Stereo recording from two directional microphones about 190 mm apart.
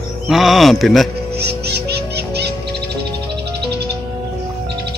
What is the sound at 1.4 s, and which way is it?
Owl, 60° right (ahead or behind).